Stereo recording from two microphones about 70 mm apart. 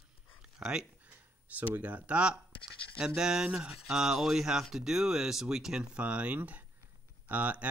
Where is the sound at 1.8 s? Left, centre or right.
Right.